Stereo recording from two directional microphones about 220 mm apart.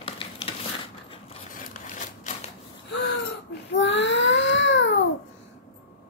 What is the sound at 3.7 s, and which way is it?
Baby cry, 55° left (ahead or behind).